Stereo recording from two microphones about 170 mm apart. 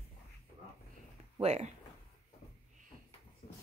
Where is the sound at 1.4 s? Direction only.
40° right (ahead or behind).